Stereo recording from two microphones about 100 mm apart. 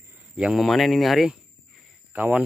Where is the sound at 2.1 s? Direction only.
15° right (ahead or behind).